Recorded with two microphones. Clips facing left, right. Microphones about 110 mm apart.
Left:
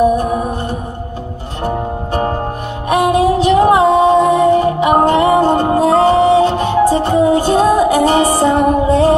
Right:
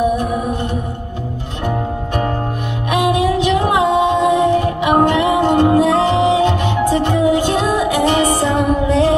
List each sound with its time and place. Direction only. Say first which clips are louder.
1.6 s music: left 2 dB; 35° left (ahead or behind)